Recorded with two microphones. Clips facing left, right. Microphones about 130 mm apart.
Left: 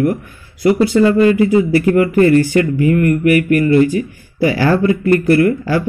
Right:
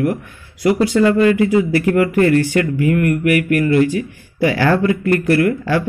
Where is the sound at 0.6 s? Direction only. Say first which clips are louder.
Left 2 dB; centre (ahead or behind).